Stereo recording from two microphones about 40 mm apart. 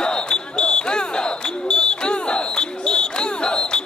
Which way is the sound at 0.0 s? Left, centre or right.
Left.